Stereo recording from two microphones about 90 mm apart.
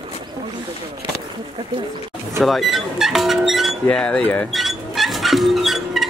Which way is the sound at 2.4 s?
Centre (ahead or behind).